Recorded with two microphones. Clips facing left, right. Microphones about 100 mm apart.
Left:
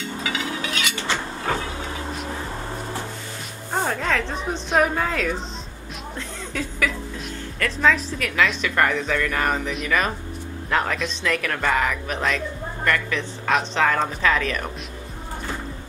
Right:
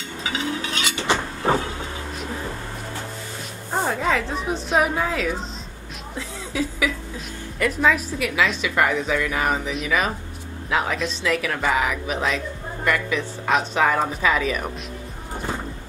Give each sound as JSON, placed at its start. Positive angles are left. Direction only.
{"t": 0.2, "sound": "a sound", "side_deg": -30}
{"t": 1.4, "sound": "vehicle", "side_deg": -30}
{"t": 3.7, "sound": "a woman's voice", "side_deg": -5}